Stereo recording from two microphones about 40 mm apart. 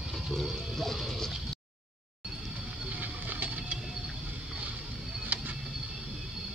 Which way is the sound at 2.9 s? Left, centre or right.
Right.